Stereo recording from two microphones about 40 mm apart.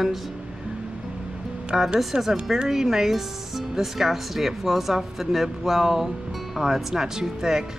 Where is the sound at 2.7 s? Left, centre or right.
Centre.